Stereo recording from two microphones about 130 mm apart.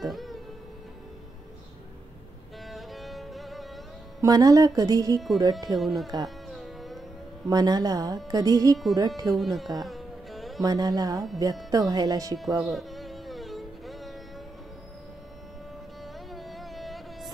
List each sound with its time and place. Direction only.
0.0 s music: centre (ahead or behind)
2.7 s music: centre (ahead or behind)
4.2 s a woman's voice: 30° right (ahead or behind)
5.8 s speech: centre (ahead or behind)
6.2 s music: centre (ahead or behind)
7.4 s a woman's voice: 30° right (ahead or behind)
9.3 s music: centre (ahead or behind)
10.6 s a woman's voice: 30° right (ahead or behind)
12.6 s music: centre (ahead or behind)
16.3 s a sound: centre (ahead or behind)